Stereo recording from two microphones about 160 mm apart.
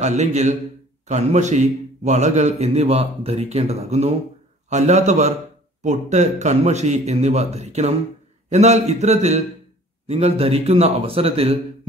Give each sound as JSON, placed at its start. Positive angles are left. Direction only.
{"t": 0.0, "sound": "a man's voice", "side_deg": -45}